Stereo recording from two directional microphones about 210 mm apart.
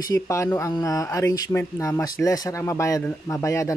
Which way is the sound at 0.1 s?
15° left (ahead or behind).